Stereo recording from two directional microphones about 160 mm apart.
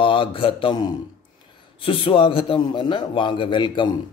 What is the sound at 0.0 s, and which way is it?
Mantra, 35° left (ahead or behind).